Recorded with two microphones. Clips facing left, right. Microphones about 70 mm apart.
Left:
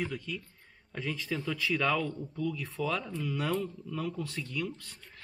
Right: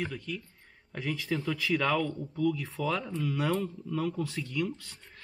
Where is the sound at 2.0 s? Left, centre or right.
Centre.